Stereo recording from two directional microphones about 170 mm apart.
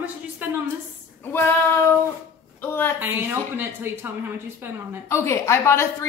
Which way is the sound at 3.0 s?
10° right (ahead or behind).